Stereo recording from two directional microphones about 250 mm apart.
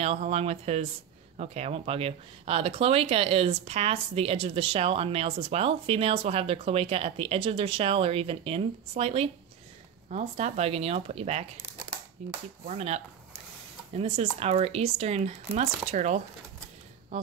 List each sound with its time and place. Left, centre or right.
0.0 s speech: right